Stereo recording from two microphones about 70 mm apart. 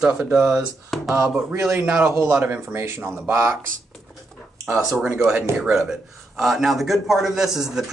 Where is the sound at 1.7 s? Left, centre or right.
Right.